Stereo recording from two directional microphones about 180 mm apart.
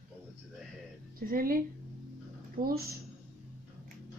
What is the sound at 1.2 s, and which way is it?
Speech, 50° right (ahead or behind).